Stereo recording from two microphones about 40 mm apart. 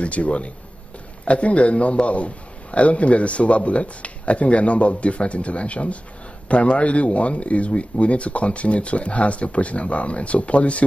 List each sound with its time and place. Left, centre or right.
0.0 s a man's voice: left